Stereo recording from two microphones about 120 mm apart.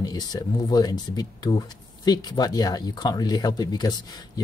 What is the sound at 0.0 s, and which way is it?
Speech, 35° left (ahead or behind).